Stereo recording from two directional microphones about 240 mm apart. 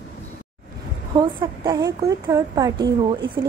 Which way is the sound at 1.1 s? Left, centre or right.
Centre.